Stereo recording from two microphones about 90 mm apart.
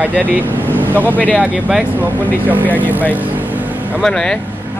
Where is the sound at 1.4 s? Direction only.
10° right (ahead or behind).